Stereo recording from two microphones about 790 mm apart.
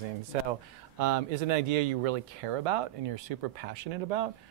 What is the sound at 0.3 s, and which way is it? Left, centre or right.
Speech, right.